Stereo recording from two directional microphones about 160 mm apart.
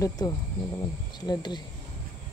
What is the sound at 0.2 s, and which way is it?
Speech, 20° left (ahead or behind).